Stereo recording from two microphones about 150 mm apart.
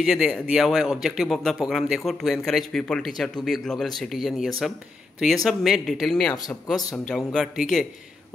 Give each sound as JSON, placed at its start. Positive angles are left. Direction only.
{"t": 0.0, "sound": "speech", "side_deg": 0}